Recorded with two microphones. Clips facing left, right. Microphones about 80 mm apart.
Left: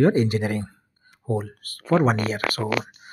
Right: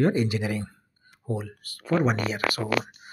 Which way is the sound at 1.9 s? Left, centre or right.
Left.